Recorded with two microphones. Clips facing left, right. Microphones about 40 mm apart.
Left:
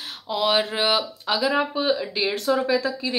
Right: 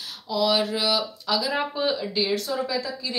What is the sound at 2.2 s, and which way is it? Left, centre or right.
Speech, left.